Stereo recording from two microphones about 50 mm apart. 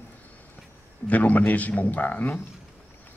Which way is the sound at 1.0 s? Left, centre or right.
Left.